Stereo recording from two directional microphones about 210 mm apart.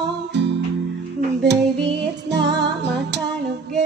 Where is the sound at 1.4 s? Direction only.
55° right (ahead or behind).